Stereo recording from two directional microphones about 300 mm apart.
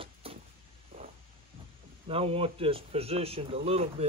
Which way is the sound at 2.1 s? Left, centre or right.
Centre.